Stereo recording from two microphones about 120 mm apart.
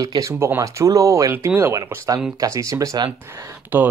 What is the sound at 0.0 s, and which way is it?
Speech, 30° right (ahead or behind).